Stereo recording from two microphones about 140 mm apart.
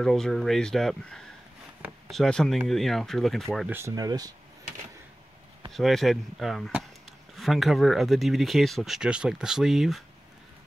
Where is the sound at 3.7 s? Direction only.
20° right (ahead or behind).